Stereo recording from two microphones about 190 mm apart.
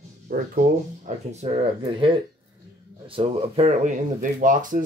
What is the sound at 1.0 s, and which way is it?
Speech, 35° right (ahead or behind).